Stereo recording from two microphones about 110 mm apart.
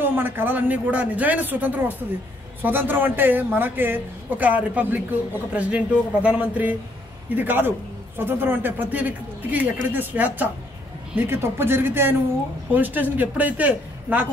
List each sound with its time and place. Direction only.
0.0 s a man's voice: 20° right (ahead or behind)